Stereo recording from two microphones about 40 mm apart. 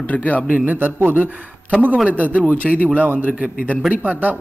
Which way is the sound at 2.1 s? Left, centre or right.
Left.